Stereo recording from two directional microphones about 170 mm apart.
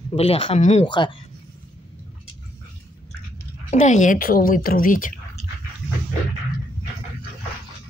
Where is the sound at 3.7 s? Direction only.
45° left (ahead or behind).